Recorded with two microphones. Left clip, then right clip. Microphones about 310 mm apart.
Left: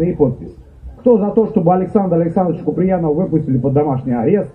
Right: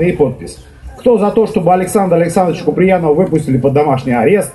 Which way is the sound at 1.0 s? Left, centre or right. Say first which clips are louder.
Right 3 dB; right.